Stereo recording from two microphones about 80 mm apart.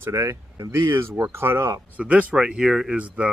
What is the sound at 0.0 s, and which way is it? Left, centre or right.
Speech, right.